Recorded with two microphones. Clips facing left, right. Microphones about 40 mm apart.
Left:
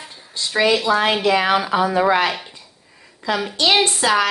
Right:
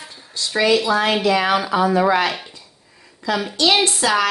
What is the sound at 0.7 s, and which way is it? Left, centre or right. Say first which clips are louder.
Speech: even; left.